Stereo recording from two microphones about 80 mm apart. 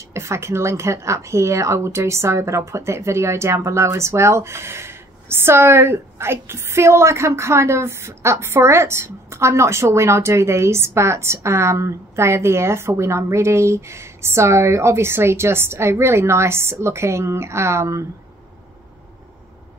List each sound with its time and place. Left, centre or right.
0.1 s a woman's voice: right